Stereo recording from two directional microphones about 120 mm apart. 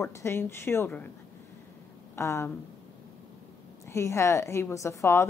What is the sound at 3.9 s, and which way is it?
A woman's voice, 25° left (ahead or behind).